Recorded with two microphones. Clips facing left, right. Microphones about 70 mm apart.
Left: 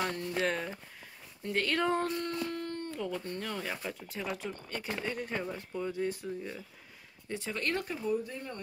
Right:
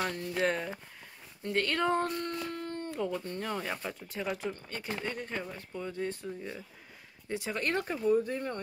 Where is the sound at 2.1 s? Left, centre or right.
Centre.